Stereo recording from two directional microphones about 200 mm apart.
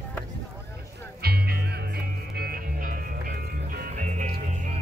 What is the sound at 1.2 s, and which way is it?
Music, 50° right (ahead or behind).